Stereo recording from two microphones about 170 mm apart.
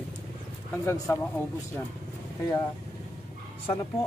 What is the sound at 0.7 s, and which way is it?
Speech, 15° left (ahead or behind).